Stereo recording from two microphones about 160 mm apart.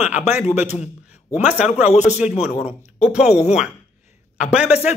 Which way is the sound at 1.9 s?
45° left (ahead or behind).